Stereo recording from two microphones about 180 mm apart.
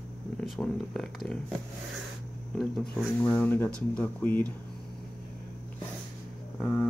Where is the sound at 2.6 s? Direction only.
5° left (ahead or behind).